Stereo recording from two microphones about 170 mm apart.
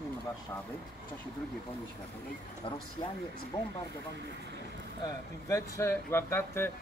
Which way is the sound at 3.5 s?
15° left (ahead or behind).